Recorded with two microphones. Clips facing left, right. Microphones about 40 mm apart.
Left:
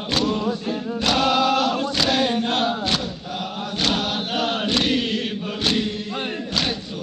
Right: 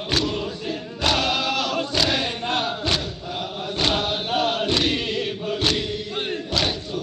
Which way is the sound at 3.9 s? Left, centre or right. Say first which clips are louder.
Right 1 dB; right.